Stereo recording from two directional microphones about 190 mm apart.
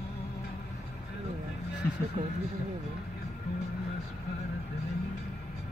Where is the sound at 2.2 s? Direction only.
35° right (ahead or behind).